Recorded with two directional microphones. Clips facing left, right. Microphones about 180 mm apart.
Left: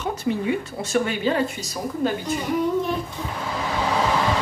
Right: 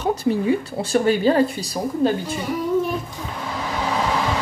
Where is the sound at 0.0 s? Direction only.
35° right (ahead or behind).